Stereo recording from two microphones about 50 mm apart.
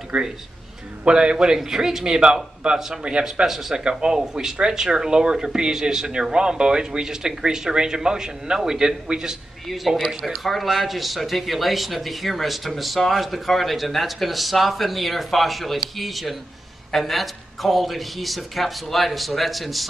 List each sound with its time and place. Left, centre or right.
0.1 s speech: right
3.4 s speech: centre
9.7 s speech: centre